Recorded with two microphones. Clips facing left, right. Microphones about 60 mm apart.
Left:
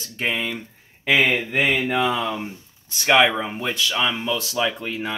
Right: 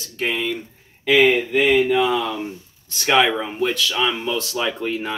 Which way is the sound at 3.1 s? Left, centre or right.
Left.